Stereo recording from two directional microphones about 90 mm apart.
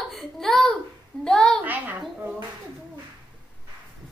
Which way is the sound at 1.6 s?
20° right (ahead or behind).